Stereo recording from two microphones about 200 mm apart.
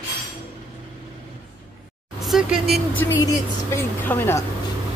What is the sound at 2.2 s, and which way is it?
Speech, centre (ahead or behind).